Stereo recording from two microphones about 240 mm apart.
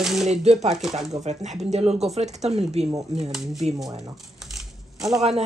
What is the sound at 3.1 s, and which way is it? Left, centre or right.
Speech, centre.